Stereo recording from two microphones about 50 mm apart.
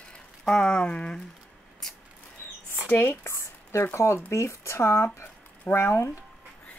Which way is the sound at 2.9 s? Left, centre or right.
Left.